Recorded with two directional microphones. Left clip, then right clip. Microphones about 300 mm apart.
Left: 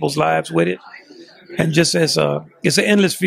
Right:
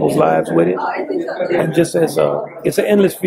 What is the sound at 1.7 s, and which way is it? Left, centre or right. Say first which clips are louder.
Speech: left 2 dB; left.